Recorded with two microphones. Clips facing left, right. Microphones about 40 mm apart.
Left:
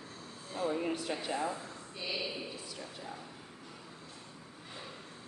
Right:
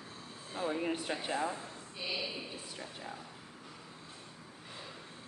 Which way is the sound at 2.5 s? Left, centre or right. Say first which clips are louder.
Even; right.